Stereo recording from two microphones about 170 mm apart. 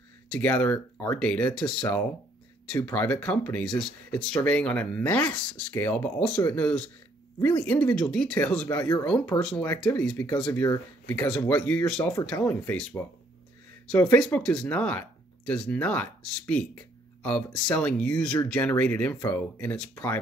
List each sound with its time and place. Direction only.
0.3 s speech: 10° left (ahead or behind)
8.6 s speech: 15° left (ahead or behind)
9.0 s speech: 5° left (ahead or behind)